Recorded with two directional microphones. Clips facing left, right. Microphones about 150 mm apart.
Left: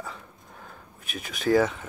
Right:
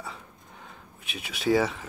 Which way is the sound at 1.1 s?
5° right (ahead or behind).